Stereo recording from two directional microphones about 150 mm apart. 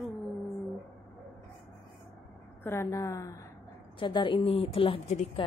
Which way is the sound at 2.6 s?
20° left (ahead or behind).